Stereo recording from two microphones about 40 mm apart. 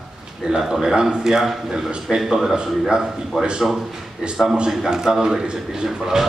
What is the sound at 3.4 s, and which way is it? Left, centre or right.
A man's voice, right.